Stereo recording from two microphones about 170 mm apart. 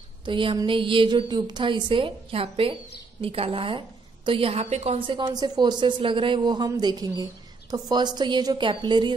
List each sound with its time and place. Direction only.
0.2 s a woman's voice: 30° right (ahead or behind)